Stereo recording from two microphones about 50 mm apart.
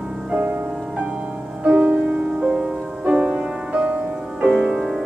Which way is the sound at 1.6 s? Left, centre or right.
Right.